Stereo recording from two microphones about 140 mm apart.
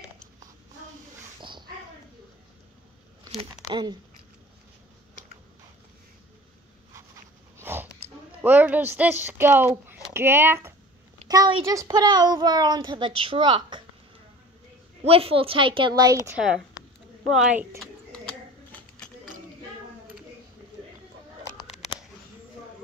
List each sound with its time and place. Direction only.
3.6 s speech: 30° right (ahead or behind)
7.5 s a sound: 15° right (ahead or behind)
8.4 s speech: 10° right (ahead or behind)
11.2 s a woman's voice: 25° right (ahead or behind)
15.0 s speech: 45° right (ahead or behind); by 16.2 s 25° right (ahead or behind)
17.3 s speech: 5° right (ahead or behind)